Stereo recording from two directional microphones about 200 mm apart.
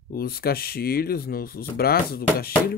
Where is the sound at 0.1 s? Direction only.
50° left (ahead or behind).